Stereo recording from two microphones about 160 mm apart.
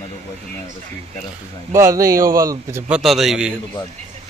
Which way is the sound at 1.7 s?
20° right (ahead or behind).